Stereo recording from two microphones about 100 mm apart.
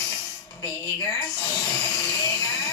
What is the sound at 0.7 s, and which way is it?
Speech, 30° left (ahead or behind).